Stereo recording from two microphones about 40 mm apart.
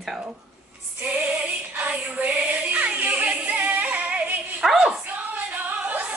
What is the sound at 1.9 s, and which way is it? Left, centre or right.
Music, right.